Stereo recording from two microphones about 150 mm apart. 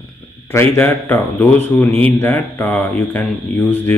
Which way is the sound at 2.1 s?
15° left (ahead or behind).